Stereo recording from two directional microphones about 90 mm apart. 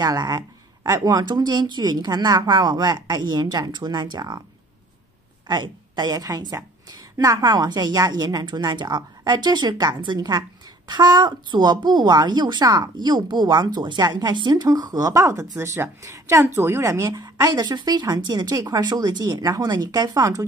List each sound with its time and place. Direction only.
0.0 s a woman's voice: 45° right (ahead or behind)
5.5 s a woman's voice: 55° right (ahead or behind); by 17.2 s 30° right (ahead or behind)
17.2 s a woman's voice: 45° right (ahead or behind)